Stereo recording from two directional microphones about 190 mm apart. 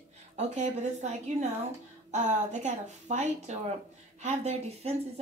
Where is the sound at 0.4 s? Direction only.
35° right (ahead or behind).